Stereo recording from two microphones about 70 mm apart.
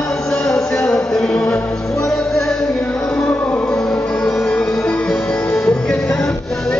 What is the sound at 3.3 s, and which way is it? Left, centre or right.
Music, left.